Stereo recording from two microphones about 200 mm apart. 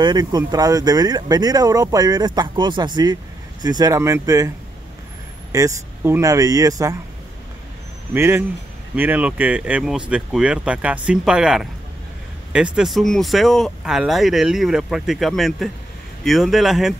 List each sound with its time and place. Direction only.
0.0 s speech: 20° right (ahead or behind)
5.5 s speech: 15° right (ahead or behind)
8.1 s speech: 10° right (ahead or behind)